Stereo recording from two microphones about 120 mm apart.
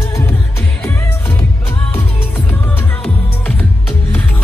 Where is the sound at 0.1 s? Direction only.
20° left (ahead or behind).